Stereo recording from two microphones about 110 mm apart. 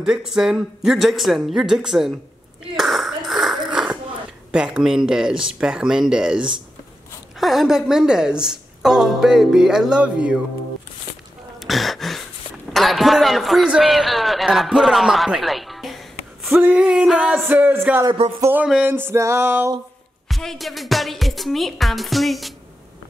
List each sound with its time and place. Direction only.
0.0 s a woman's voice: 5° right (ahead or behind)
2.8 s throat clearing: centre (ahead or behind)
3.3 s a sound: centre (ahead or behind)
4.5 s a woman's voice: 10° right (ahead or behind)
11.6 s throat clearing: centre (ahead or behind)
12.7 s a sound: centre (ahead or behind)
16.6 s a woman's voice: 10° right (ahead or behind)
17.5 s speech: 15° right (ahead or behind)
18.9 s music: 20° right (ahead or behind)
20.2 s a woman's voice: centre (ahead or behind)